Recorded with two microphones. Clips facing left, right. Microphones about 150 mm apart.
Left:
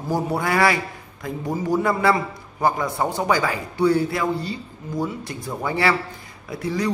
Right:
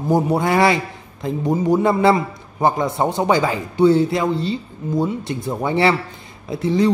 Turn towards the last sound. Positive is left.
turn(degrees=-25)  # may be behind; listen again after turning